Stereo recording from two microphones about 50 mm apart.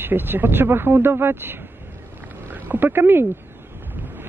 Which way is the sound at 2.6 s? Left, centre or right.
Right.